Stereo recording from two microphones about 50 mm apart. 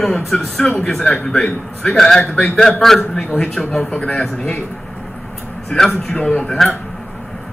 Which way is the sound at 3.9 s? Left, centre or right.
Left.